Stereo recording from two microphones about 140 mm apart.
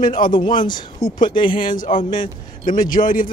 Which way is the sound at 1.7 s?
70° left (ahead or behind).